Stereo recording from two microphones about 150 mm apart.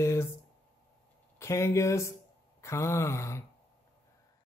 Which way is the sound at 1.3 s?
20° left (ahead or behind).